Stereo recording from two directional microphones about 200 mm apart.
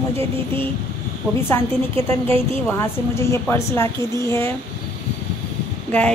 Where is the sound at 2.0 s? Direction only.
10° left (ahead or behind).